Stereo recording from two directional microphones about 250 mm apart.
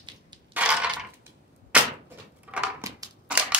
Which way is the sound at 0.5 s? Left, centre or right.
Centre.